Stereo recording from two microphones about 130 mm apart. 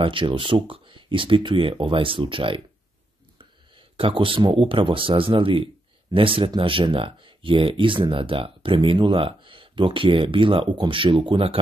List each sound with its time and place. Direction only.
0.0 s speech: 40° right (ahead or behind)
3.7 s speech: 45° right (ahead or behind)